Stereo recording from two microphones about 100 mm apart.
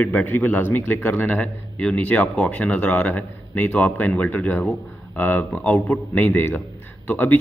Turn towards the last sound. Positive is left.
turn(degrees=15)  # may be behind; listen again after turning